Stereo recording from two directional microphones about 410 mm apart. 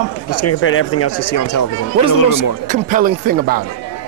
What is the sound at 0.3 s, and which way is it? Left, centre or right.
Speech, left.